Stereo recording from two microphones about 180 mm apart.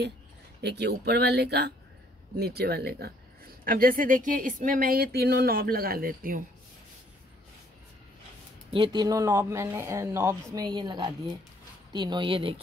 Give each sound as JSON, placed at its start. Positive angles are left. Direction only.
{"t": 0.6, "sound": "speech", "side_deg": -65}
{"t": 8.7, "sound": "speech", "side_deg": -25}